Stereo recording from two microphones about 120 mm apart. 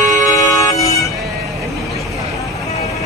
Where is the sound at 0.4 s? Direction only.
30° left (ahead or behind).